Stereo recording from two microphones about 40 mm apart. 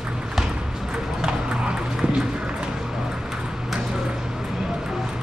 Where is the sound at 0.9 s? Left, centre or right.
Right.